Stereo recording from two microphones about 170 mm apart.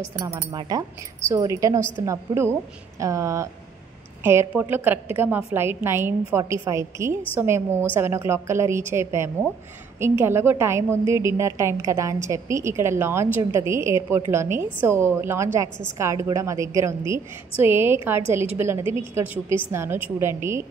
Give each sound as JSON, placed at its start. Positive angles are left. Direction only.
{"t": 0.5, "sound": "a woman's voice", "side_deg": -25}